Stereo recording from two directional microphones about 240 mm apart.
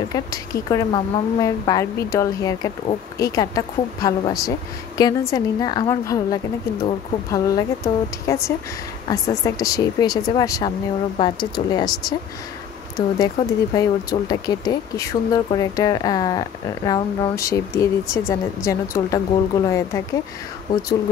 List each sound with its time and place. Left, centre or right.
0.1 s a woman's voice: centre